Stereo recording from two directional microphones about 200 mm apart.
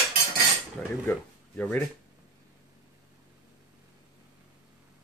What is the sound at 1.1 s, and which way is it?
Speech, 10° left (ahead or behind).